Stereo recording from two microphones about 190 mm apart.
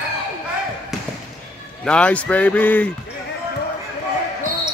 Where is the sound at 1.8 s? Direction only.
5° left (ahead or behind).